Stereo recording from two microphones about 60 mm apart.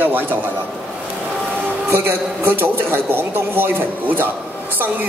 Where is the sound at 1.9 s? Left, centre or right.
Right.